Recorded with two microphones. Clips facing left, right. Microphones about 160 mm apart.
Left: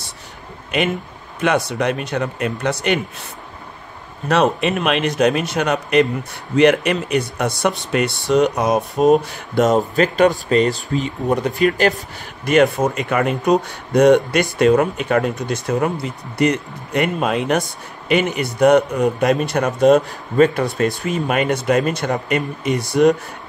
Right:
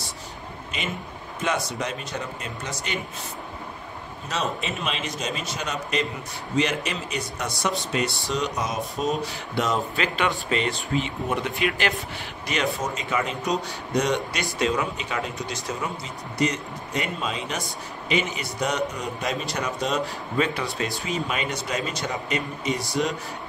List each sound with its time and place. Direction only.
0.7 s speech: 65° left (ahead or behind)
4.3 s speech: 65° left (ahead or behind); by 12.0 s 40° left (ahead or behind)
12.4 s speech: 50° left (ahead or behind)